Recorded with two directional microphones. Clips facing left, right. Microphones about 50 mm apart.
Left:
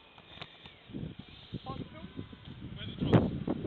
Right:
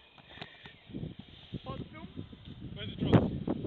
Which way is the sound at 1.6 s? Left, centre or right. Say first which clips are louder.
Even; right.